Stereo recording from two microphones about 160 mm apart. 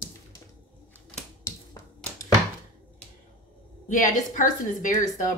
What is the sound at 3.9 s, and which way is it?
A woman's voice, 55° left (ahead or behind).